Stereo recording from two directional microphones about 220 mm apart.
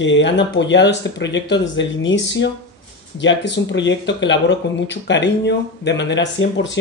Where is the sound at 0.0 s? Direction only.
55° left (ahead or behind).